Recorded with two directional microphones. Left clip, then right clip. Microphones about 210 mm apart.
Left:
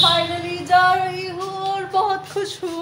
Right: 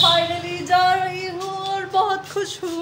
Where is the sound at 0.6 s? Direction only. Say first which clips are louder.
Left 2 dB; 10° left (ahead or behind).